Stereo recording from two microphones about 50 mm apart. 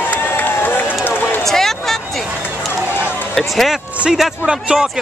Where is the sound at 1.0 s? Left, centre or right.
Left.